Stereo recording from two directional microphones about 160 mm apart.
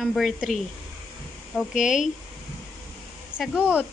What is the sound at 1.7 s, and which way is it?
Speech, 55° left (ahead or behind).